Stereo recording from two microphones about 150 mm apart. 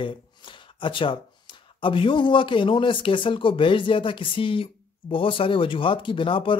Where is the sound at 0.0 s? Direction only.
35° left (ahead or behind).